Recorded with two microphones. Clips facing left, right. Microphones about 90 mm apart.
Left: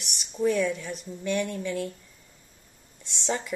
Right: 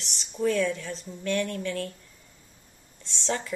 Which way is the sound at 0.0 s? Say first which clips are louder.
Left 1 dB; 15° left (ahead or behind).